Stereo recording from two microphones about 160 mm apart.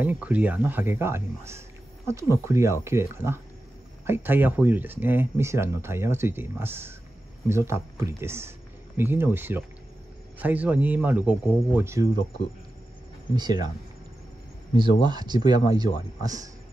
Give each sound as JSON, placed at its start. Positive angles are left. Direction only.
{"t": 0.0, "sound": "speech", "side_deg": -10}
{"t": 13.3, "sound": "speech", "side_deg": -25}
{"t": 14.8, "sound": "speech", "side_deg": -25}